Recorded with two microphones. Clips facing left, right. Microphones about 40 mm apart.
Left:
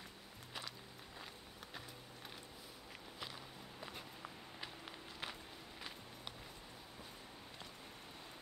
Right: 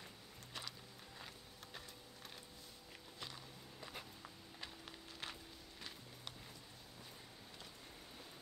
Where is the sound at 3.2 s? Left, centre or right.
Centre.